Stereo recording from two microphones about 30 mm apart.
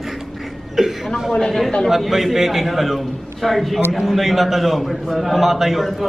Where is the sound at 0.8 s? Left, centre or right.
Centre.